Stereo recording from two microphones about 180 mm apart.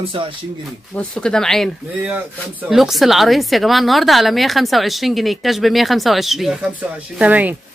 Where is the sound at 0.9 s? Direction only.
5° left (ahead or behind).